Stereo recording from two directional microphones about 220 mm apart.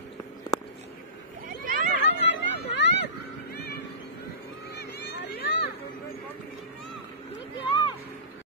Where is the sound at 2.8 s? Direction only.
55° left (ahead or behind).